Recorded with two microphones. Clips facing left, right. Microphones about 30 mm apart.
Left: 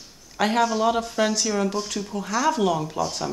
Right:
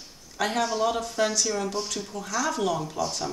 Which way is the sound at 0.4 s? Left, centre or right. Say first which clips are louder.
Left 4 dB; left.